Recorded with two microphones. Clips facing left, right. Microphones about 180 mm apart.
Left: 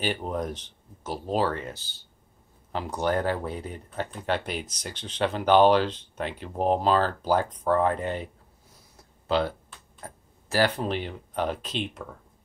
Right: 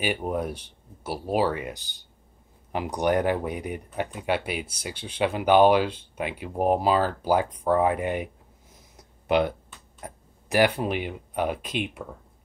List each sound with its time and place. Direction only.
0.0 s speech: 10° right (ahead or behind)
8.9 s a sound: 15° right (ahead or behind)
9.9 s speech: 15° right (ahead or behind)